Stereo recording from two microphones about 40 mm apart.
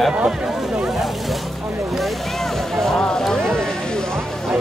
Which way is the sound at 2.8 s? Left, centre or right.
Centre.